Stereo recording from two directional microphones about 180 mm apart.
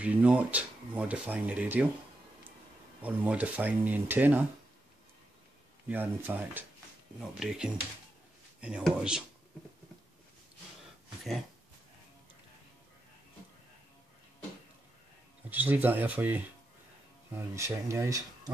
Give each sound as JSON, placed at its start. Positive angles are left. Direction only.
{"t": 0.0, "sound": "speech", "side_deg": -5}
{"t": 3.0, "sound": "speech", "side_deg": -10}
{"t": 5.9, "sound": "speech", "side_deg": -10}
{"t": 15.5, "sound": "speech", "side_deg": -10}